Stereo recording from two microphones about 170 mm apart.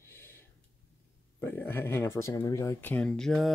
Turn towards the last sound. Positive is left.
turn(degrees=5)  # may be behind; listen again after turning